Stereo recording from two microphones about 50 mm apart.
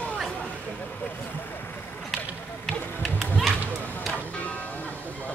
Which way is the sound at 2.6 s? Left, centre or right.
Centre.